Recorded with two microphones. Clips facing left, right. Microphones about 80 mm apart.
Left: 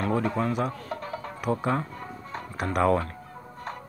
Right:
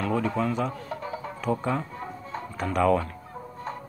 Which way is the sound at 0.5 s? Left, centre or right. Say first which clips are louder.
Even; centre.